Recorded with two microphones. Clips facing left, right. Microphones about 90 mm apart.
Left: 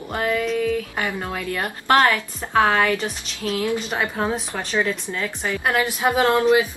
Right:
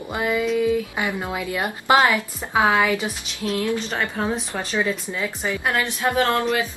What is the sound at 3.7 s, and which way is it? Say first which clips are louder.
Speech: left 1 dB; 15° left (ahead or behind).